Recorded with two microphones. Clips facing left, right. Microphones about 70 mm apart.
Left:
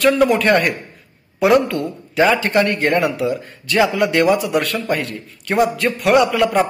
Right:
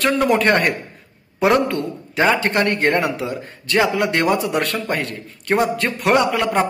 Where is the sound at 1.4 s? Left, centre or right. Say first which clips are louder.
Left 2 dB; right.